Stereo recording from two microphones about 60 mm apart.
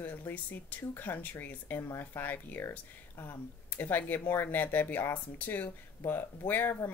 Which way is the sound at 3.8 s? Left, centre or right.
Left.